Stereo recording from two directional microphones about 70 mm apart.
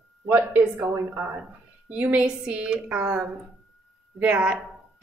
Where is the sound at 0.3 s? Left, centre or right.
Right.